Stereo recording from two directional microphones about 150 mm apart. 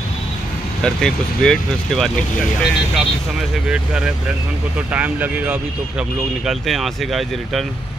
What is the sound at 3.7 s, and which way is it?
Speech, 5° right (ahead or behind).